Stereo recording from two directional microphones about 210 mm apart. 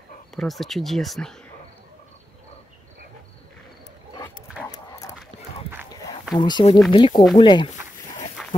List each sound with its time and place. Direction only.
0.4 s speech: centre (ahead or behind)
4.6 s dog: 15° left (ahead or behind)
6.3 s speech: 20° left (ahead or behind)
8.4 s a sound: centre (ahead or behind)